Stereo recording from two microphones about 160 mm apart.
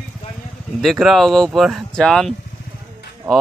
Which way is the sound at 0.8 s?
Centre (ahead or behind).